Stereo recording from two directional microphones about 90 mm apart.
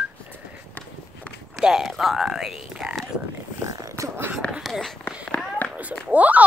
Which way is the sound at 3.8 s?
40° right (ahead or behind).